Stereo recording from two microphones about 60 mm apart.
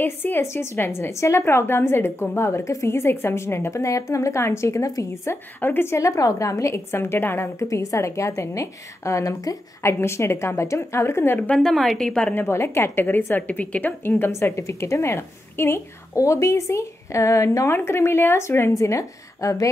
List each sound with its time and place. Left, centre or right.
0.0 s a woman's voice: left
0.4 s a woman's voice: left
1.4 s a woman's voice: left
5.6 s a woman's voice: left
5.9 s a woman's voice: left
7.5 s a woman's voice: left
9.8 s a woman's voice: left
11.5 s a woman's voice: centre
12.4 s a woman's voice: left
13.4 s a woman's voice: left
14.3 s a woman's voice: left
16.2 s a woman's voice: left
17.7 s a woman's voice: left
18.7 s a woman's voice: left